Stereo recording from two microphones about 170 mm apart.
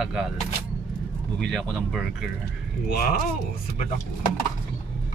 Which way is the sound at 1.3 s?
Centre (ahead or behind).